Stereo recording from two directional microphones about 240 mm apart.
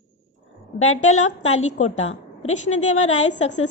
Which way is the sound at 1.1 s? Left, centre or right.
Left.